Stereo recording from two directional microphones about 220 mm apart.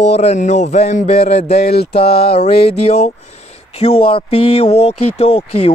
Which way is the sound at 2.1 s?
45° left (ahead or behind).